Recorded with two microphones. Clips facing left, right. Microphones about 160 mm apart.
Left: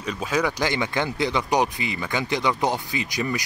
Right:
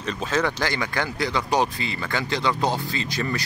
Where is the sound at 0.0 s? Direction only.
10° left (ahead or behind).